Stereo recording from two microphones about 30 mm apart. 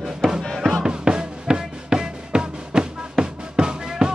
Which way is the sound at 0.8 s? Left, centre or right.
Right.